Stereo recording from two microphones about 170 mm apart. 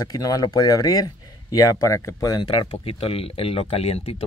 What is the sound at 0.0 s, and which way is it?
Speech, 20° left (ahead or behind).